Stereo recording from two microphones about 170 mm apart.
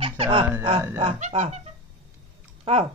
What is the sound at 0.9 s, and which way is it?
Speech, 40° right (ahead or behind).